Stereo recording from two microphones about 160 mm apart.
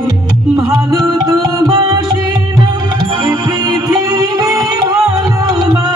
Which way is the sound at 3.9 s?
20° right (ahead or behind).